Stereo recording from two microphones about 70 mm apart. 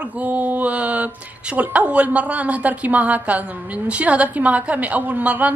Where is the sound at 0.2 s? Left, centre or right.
Right.